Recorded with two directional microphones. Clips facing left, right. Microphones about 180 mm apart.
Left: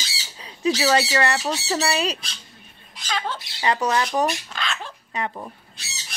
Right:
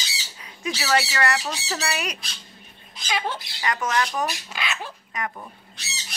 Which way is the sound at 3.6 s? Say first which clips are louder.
Left 3 dB; 30° left (ahead or behind).